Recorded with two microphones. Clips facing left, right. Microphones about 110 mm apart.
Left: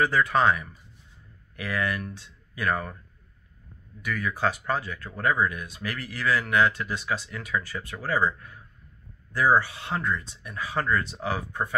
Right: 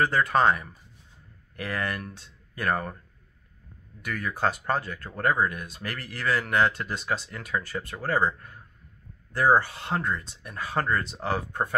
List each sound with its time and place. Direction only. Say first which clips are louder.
0.0 s speech: even; 45° right (ahead or behind)
4.0 s speech: left 1 dB; 45° right (ahead or behind)
9.3 s speech: right 1 dB; 50° right (ahead or behind)